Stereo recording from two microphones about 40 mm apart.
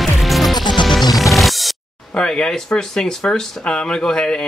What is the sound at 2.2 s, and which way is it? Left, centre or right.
Speech, centre.